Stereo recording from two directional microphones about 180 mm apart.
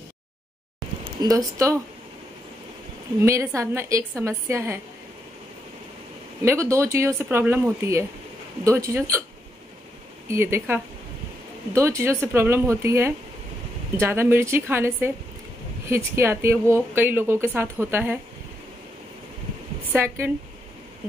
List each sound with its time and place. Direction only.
1.2 s speech: 20° right (ahead or behind)
3.2 s speech: 15° right (ahead or behind)
6.4 s speech: 15° right (ahead or behind)
10.3 s speech: 15° right (ahead or behind)
19.9 s speech: 15° right (ahead or behind)